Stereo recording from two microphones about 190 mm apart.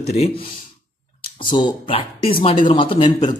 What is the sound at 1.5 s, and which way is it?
Speech, 25° left (ahead or behind).